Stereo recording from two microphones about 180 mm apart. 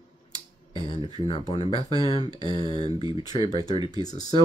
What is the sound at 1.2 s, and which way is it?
Speech, 35° left (ahead or behind).